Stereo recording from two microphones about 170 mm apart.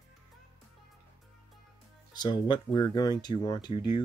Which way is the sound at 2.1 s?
25° left (ahead or behind).